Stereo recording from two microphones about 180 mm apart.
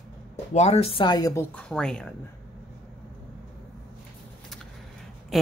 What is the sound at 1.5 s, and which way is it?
Speech, 5° left (ahead or behind).